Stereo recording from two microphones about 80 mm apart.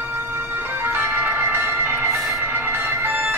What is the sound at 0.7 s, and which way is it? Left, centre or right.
Music, right.